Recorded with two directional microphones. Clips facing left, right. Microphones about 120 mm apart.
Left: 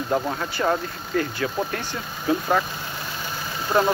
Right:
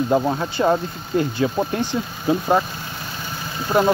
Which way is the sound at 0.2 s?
20° right (ahead or behind).